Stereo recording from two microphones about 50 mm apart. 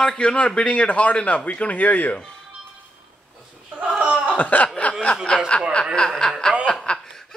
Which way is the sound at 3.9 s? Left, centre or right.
Right.